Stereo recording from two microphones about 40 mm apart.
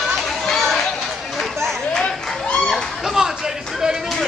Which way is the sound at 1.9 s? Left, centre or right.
Left.